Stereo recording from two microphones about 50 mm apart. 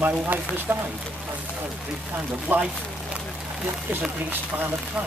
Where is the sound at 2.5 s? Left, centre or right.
Right.